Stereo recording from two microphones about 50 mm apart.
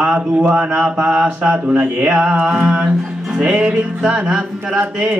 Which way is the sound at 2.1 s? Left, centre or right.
Centre.